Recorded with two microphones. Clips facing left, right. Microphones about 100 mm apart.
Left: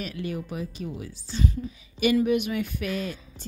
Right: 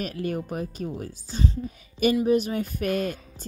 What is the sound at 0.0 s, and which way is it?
A woman's voice, 45° right (ahead or behind).